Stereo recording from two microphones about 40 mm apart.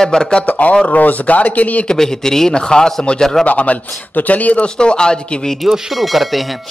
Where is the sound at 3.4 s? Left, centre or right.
Left.